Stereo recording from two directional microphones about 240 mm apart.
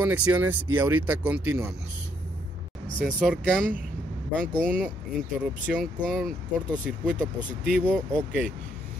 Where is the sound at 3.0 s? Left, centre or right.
Centre.